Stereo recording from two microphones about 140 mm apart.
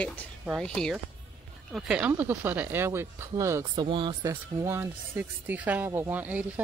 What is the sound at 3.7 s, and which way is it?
Speech, 35° right (ahead or behind).